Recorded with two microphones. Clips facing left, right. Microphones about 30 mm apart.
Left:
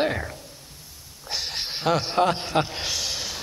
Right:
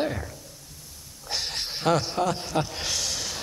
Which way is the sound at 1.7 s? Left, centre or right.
Centre.